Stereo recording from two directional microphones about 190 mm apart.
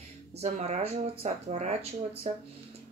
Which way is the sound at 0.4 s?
35° right (ahead or behind).